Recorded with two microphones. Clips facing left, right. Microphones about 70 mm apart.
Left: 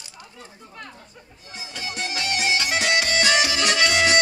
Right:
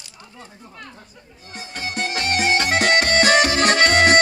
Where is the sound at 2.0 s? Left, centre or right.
Right.